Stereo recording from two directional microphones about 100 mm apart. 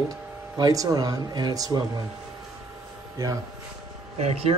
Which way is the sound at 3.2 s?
30° right (ahead or behind).